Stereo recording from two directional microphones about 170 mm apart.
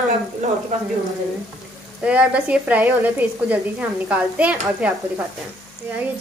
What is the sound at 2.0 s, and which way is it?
A woman's voice, 5° right (ahead or behind).